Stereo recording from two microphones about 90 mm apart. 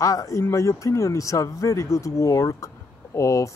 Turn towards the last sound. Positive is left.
turn(degrees=35)  # may be behind; listen again after turning